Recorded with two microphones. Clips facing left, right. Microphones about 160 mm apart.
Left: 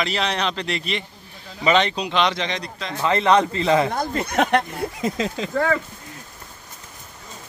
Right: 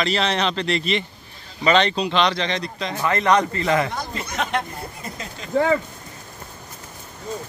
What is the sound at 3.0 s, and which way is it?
Speech, 15° left (ahead or behind).